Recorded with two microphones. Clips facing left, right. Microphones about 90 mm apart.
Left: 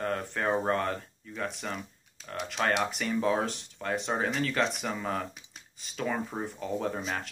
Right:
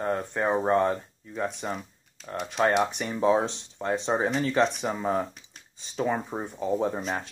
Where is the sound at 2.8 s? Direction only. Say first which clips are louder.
Right 3 dB; 20° right (ahead or behind).